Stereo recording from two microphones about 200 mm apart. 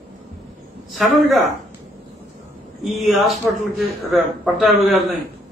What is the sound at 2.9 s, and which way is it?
Speech, centre (ahead or behind).